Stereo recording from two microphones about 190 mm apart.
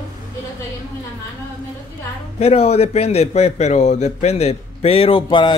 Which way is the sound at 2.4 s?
35° left (ahead or behind).